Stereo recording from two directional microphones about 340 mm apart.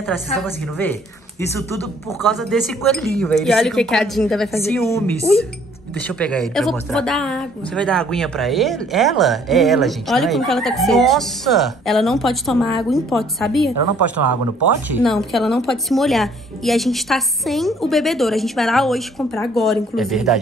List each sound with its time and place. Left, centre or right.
0.0 s a woman's voice: centre
2.0 s a woman's voice: centre
13.7 s speech: right
14.9 s a woman's voice: centre